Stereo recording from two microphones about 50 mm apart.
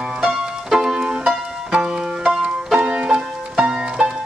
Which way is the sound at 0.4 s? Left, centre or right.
Centre.